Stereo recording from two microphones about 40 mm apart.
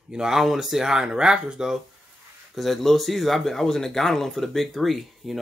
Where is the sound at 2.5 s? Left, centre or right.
Centre.